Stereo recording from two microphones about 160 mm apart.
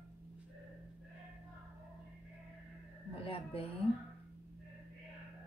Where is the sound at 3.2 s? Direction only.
35° left (ahead or behind).